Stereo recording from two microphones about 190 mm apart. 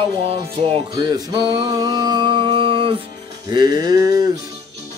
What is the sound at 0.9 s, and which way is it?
Music, 20° right (ahead or behind).